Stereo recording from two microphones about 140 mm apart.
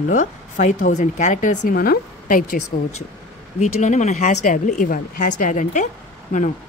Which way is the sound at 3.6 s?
60° left (ahead or behind).